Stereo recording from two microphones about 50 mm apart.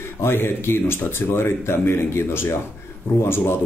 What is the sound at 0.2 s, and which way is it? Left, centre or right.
Speech, left.